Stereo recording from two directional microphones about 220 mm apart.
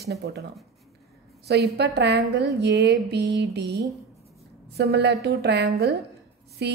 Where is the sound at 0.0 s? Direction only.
45° right (ahead or behind).